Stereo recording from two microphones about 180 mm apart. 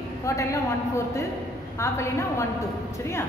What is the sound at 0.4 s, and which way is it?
A woman's voice, 15° left (ahead or behind).